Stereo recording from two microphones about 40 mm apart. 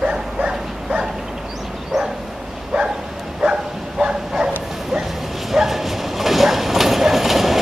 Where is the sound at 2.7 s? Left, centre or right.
Right.